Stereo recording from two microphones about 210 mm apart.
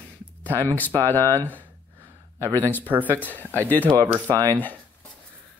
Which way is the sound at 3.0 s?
10° left (ahead or behind).